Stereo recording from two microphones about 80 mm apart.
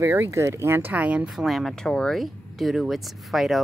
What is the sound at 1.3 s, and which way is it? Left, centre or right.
Speech, centre.